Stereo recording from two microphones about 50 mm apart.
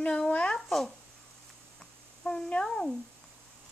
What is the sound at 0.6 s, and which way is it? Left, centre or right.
Speech, centre.